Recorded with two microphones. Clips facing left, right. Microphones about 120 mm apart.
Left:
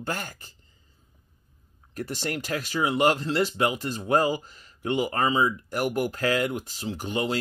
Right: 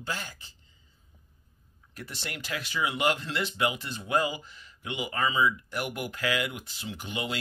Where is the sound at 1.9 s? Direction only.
45° left (ahead or behind).